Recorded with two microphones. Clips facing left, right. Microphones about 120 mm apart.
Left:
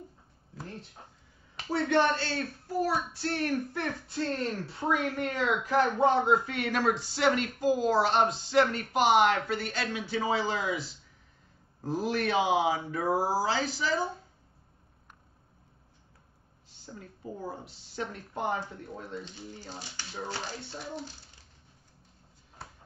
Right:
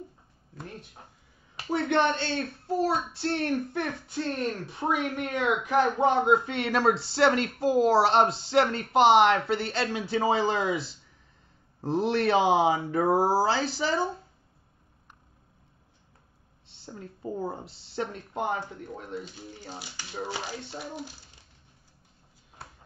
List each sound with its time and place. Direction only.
1.7 s a child's voice: 20° right (ahead or behind)
16.8 s a child's voice: 30° right (ahead or behind); by 21.1 s 15° right (ahead or behind)